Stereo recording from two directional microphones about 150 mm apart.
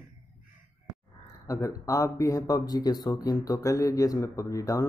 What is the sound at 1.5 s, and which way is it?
Speech, 20° left (ahead or behind).